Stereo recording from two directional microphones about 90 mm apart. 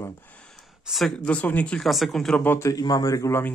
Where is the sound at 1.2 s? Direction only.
15° left (ahead or behind).